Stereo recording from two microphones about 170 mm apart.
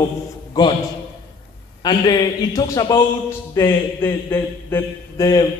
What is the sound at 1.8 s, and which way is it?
A man's voice, 25° left (ahead or behind).